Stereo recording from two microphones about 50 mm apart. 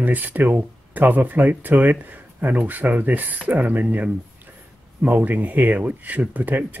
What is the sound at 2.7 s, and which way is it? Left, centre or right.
Speech, right.